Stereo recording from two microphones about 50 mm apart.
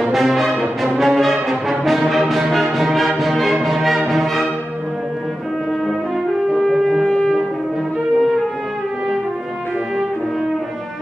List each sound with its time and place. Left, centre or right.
0.0 s music: centre
6.7 s shofar: centre
7.1 s brass instrument: centre